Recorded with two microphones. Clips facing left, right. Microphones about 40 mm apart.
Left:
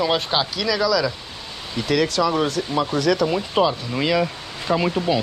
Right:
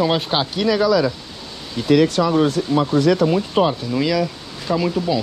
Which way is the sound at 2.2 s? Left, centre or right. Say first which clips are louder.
Right 2 dB; centre.